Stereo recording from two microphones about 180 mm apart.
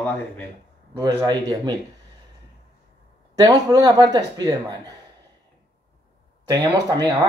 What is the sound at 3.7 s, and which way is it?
A woman's voice, 20° right (ahead or behind).